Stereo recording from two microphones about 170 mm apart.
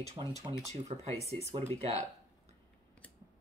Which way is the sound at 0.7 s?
35° right (ahead or behind).